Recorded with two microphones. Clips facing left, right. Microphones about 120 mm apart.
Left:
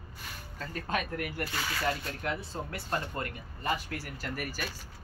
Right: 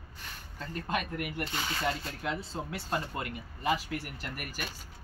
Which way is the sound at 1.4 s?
25° right (ahead or behind).